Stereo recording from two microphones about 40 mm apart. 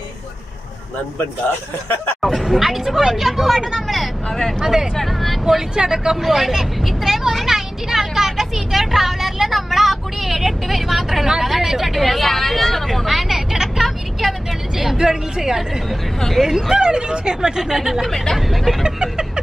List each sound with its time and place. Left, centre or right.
2.3 s speech: centre
3.8 s vehicle: centre
4.3 s speech: centre
4.6 s speech: centre
4.9 s speech: centre
5.8 s speech: centre
6.2 s speech: centre
7.4 s vehicle: centre
14.8 s speech: centre
18.1 s speech: centre
18.9 s a sound: centre